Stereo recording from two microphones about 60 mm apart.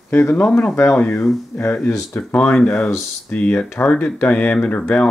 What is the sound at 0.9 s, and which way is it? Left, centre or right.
Speech, left.